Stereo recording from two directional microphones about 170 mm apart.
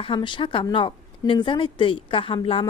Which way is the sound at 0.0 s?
30° left (ahead or behind).